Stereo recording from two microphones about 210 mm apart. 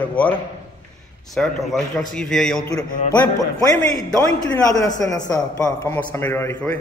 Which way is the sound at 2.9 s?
40° left (ahead or behind).